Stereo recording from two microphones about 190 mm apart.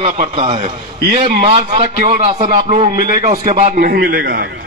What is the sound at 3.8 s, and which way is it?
Speech, 55° right (ahead or behind).